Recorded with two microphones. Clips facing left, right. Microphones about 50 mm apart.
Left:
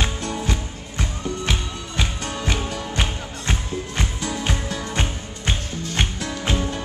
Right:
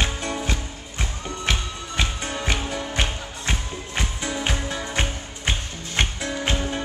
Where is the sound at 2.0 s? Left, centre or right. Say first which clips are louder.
Even; centre.